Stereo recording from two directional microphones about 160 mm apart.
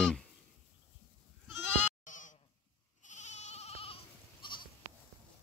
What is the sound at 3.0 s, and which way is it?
Goat, 45° left (ahead or behind).